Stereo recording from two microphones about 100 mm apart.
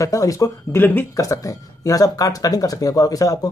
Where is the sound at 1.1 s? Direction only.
35° left (ahead or behind).